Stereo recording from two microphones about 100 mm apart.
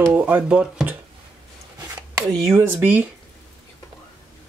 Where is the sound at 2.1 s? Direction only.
30° right (ahead or behind).